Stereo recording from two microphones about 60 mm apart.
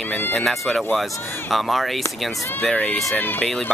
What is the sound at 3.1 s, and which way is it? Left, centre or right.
Speech, left.